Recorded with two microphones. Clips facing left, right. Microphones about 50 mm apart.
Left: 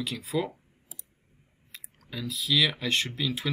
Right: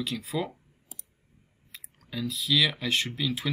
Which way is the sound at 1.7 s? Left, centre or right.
Centre.